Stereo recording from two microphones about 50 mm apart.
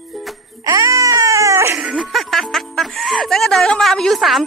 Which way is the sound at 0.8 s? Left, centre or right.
Right.